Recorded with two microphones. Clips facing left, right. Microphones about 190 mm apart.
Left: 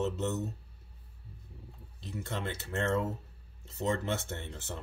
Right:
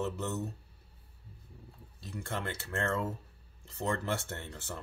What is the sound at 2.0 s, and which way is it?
Speech, 20° left (ahead or behind).